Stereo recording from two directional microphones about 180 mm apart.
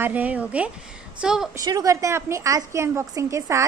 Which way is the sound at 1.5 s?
20° right (ahead or behind).